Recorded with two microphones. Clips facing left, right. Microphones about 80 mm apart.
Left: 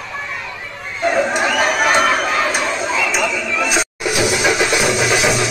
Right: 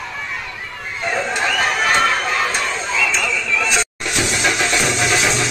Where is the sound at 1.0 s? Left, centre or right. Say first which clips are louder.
Left 5 dB; left.